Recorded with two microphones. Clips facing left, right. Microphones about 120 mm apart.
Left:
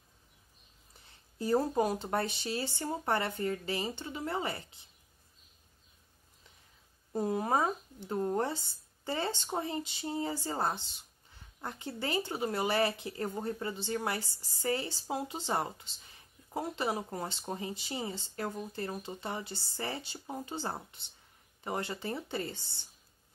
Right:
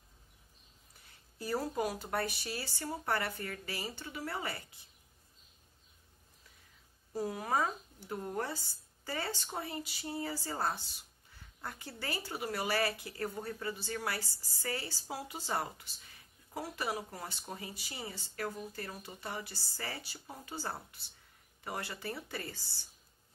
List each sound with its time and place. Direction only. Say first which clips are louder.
1.0 s speech: left 7 dB; 30° left (ahead or behind)
7.1 s speech: left 4 dB; 25° left (ahead or behind)